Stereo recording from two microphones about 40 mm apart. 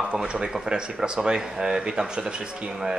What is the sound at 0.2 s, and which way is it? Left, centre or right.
A man's voice, centre.